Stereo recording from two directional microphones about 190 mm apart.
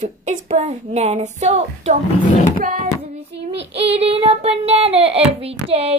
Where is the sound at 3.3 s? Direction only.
65° right (ahead or behind).